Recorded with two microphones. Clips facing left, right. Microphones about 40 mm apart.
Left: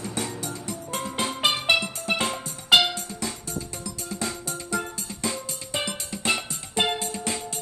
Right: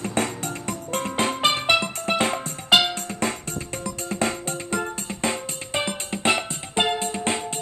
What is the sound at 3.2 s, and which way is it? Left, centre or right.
Music, right.